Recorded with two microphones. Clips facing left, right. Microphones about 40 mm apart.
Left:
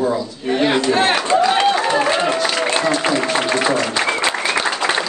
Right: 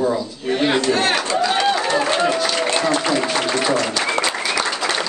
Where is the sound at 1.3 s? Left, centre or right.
Left.